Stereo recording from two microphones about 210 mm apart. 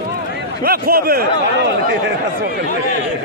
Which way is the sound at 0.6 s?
45° right (ahead or behind).